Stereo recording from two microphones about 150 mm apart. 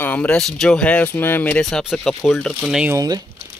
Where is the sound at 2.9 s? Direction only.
25° right (ahead or behind).